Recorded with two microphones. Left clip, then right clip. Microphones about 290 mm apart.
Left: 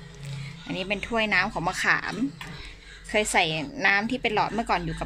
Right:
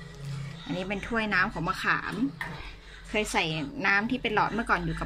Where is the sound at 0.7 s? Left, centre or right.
Centre.